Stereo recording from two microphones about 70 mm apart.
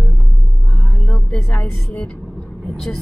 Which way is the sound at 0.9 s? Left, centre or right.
Centre.